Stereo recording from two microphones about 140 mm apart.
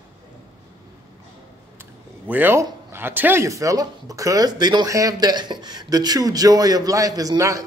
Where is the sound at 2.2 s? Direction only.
15° right (ahead or behind).